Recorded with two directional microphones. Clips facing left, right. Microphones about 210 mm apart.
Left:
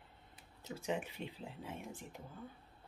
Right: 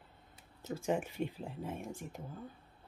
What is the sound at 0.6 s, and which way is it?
Speech, 45° right (ahead or behind).